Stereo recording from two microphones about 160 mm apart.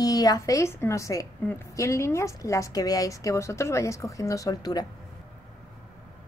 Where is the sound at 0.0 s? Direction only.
25° left (ahead or behind).